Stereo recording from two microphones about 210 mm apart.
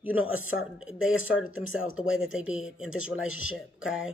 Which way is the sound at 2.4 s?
5° right (ahead or behind).